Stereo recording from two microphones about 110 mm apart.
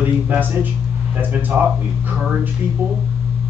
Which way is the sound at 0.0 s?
15° right (ahead or behind).